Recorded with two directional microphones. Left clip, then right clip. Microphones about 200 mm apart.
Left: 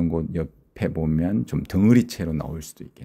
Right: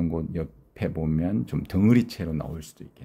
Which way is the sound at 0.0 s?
20° left (ahead or behind).